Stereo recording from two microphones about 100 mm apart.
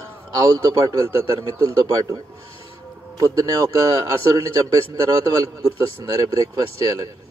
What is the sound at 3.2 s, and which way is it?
A man's voice, 35° right (ahead or behind).